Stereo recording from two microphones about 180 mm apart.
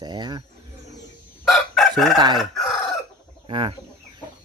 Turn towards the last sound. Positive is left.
turn(degrees=-25)  # may be behind; listen again after turning